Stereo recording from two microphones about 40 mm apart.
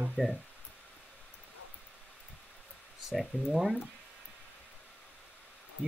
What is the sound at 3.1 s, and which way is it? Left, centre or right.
Speech, centre.